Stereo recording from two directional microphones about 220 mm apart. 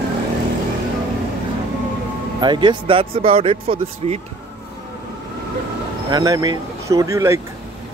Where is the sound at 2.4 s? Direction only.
20° right (ahead or behind).